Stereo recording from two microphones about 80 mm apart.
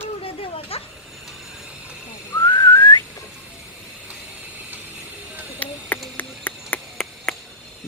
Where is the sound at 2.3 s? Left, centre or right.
Left.